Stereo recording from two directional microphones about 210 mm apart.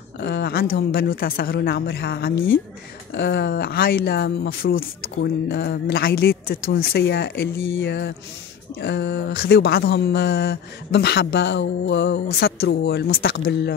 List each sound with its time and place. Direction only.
0.2 s speech: 50° left (ahead or behind)